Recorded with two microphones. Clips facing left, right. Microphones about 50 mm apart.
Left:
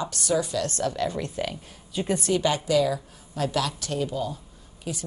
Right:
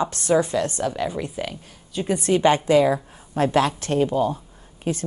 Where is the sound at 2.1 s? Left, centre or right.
Right.